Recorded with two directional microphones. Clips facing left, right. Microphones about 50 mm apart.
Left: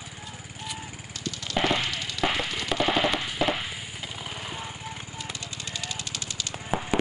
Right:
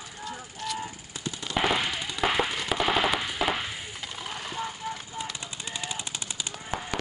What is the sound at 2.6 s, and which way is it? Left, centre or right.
Machine gun, centre.